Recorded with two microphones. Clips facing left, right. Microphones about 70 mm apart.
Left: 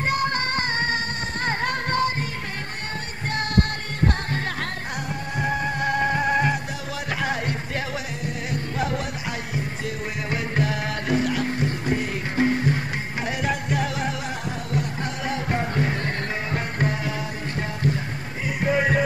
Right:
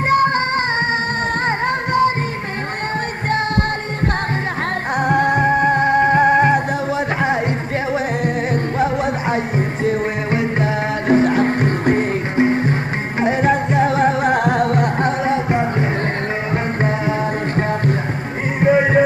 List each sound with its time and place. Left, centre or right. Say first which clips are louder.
0.1 s music: right 11 dB; right
1.7 s music: right 9 dB; right
4.9 s music: right 14 dB; right
5.4 s music: right 10 dB; right
12.4 s music: right 4 dB; right
15.2 s music: right 8 dB; right
18.6 s music: right 8 dB; right